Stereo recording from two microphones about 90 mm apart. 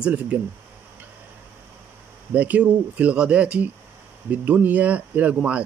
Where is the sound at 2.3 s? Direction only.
15° right (ahead or behind).